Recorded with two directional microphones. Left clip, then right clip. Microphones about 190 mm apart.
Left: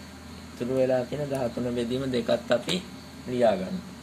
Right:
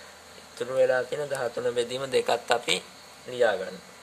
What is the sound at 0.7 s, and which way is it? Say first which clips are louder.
Speech: right 2 dB; 55° right (ahead or behind).